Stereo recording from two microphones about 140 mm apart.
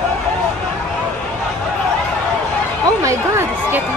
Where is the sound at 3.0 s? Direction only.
20° right (ahead or behind).